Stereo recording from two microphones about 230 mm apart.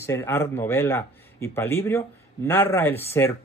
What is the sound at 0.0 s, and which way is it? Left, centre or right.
Speech, centre.